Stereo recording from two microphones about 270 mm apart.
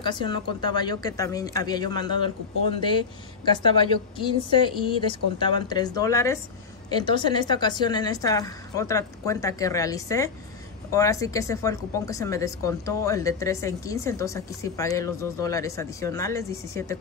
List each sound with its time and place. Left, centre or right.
0.0 s speech: centre